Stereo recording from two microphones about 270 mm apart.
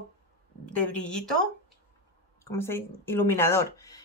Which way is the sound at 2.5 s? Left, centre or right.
Centre.